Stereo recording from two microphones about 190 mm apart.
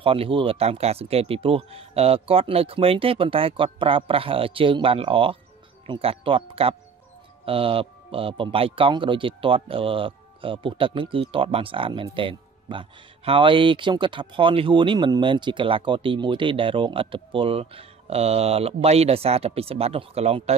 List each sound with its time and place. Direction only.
0.0 s a man's voice: 30° right (ahead or behind)